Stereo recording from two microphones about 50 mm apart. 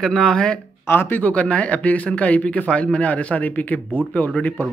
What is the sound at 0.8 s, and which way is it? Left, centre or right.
Speech, left.